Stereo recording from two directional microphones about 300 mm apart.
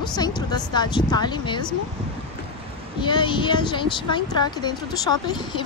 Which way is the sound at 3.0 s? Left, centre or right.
Centre.